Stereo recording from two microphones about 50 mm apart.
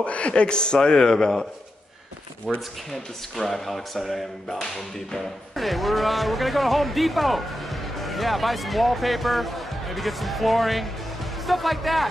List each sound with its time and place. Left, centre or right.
0.0 s a man's voice: left
2.5 s speech: centre
2.9 s speech: centre